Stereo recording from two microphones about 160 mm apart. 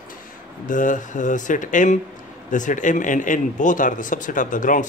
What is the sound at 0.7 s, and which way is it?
Speech, 55° left (ahead or behind).